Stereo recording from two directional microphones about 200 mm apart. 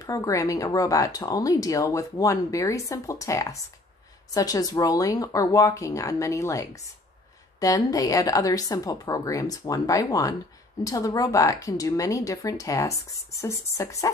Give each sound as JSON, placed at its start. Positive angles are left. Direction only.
{"t": 0.0, "sound": "speech", "side_deg": 15}